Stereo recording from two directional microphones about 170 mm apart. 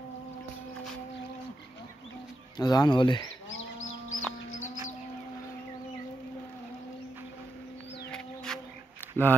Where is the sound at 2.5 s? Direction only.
25° left (ahead or behind).